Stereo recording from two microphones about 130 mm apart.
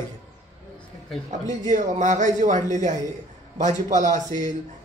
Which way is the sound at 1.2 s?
75° right (ahead or behind).